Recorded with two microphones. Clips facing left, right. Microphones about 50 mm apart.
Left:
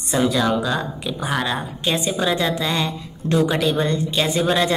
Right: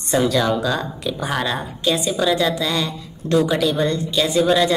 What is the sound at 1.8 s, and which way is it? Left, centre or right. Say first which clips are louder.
A woman's voice: right 2 dB; left.